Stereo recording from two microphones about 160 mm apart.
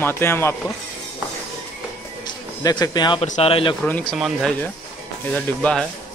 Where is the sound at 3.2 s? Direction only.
45° left (ahead or behind).